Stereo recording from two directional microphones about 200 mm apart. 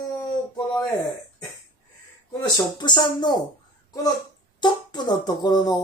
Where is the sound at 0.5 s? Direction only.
15° left (ahead or behind).